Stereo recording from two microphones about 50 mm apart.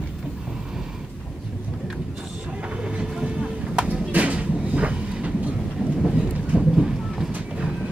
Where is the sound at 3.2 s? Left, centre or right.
Centre.